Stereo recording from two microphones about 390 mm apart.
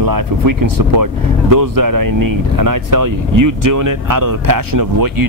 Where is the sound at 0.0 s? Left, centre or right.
Right.